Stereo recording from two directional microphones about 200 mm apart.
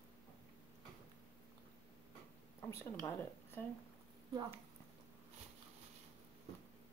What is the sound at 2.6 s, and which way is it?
A woman's voice, 10° left (ahead or behind).